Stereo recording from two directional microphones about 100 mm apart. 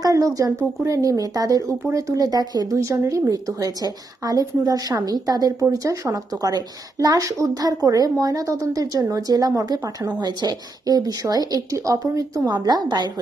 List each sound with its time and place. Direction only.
0.0 s a woman's voice: 35° right (ahead or behind)